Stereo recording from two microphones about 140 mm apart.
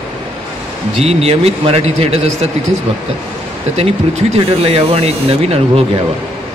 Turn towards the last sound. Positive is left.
turn(degrees=-45)  # may be behind; listen again after turning